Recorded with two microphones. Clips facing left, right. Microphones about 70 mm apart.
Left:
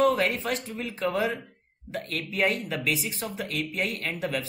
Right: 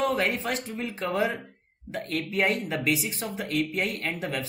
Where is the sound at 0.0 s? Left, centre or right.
Centre.